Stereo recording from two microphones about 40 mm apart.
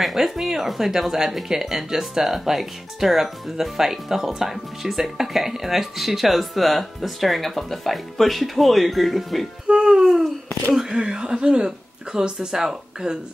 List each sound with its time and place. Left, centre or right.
0.0 s speech: centre
9.7 s music: right
10.8 s speech: centre